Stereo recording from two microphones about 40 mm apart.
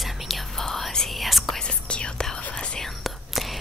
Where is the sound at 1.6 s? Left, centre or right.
Left.